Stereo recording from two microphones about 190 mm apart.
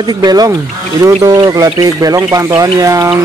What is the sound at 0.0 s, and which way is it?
Speech, 20° right (ahead or behind).